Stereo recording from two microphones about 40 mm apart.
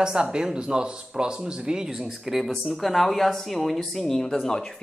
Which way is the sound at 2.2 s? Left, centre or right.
Centre.